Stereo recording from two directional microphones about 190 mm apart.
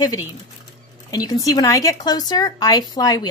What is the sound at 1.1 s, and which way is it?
Speech, 20° left (ahead or behind).